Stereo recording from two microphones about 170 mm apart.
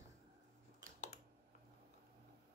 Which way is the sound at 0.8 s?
20° right (ahead or behind).